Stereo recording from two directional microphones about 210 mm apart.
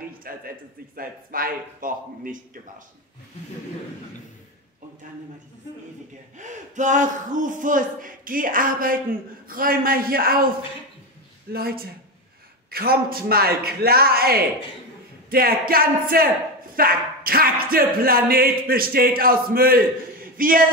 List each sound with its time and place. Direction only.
0.3 s speech: 45° right (ahead or behind)
6.3 s speech: 35° right (ahead or behind)
11.5 s speech: 45° right (ahead or behind)